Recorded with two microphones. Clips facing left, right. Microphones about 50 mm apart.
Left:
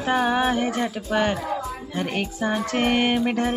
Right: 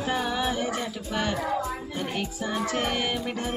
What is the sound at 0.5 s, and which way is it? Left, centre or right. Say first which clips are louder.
Speech: left 5 dB; left.